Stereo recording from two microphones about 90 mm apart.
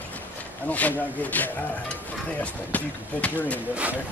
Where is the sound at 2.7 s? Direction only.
15° left (ahead or behind).